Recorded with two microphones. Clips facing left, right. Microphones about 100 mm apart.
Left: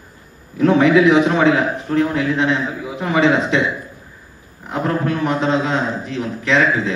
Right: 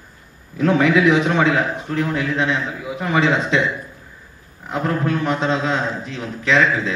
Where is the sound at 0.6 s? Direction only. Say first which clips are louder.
Left 3 dB; 30° left (ahead or behind).